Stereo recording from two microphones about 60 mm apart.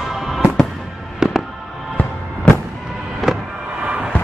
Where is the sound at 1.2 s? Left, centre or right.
Centre.